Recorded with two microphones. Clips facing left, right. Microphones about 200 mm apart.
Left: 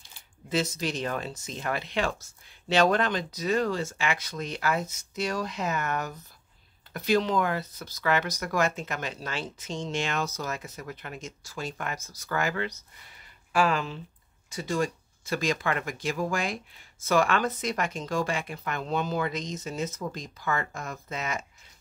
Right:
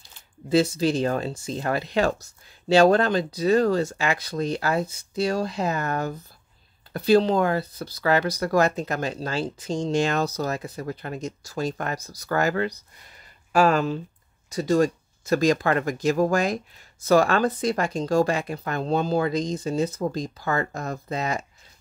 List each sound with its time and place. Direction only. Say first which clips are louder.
0.5 s speech: right 8 dB; 30° right (ahead or behind)